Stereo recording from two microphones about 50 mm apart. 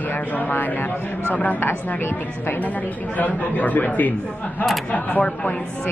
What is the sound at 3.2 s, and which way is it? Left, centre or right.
Speech, left.